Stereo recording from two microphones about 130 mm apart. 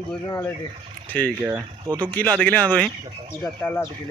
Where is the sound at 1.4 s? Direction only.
20° right (ahead or behind).